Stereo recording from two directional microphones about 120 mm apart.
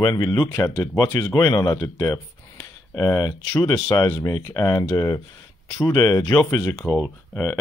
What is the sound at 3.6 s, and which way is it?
Speech, 35° left (ahead or behind).